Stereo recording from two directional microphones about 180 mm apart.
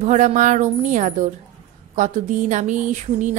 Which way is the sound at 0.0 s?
40° right (ahead or behind).